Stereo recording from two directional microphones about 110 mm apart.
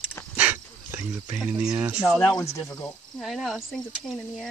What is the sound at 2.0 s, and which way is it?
Speech, 10° left (ahead or behind).